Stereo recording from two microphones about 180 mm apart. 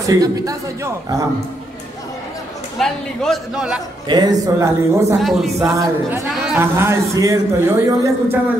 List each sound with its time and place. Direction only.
0.0 s a man's voice: 20° right (ahead or behind)
2.8 s a man's voice: centre (ahead or behind)
4.1 s a man's voice: 20° right (ahead or behind)
5.2 s a man's voice: centre (ahead or behind)
5.8 s a man's voice: 15° right (ahead or behind)
6.2 s a man's voice: centre (ahead or behind)
6.6 s a man's voice: 15° right (ahead or behind)